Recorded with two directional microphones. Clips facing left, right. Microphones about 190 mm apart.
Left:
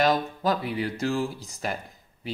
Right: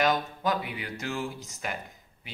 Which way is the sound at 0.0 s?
35° left (ahead or behind).